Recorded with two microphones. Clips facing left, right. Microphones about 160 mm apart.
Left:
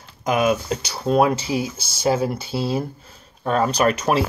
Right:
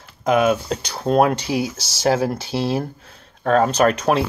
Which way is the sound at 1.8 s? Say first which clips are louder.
Right 1 dB; 90° right.